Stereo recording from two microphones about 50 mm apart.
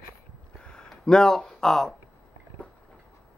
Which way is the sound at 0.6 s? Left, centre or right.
Centre.